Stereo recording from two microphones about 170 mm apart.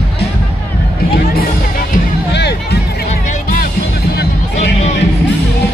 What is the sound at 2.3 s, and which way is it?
Music, 80° left.